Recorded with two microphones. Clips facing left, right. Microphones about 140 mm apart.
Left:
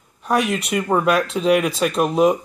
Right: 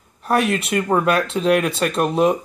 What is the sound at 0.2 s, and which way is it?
Speech, centre (ahead or behind).